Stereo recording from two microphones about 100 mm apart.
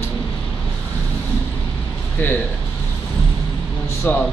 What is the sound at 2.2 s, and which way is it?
Speech, 20° left (ahead or behind).